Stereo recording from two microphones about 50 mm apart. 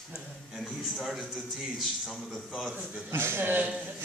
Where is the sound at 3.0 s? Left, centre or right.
Right.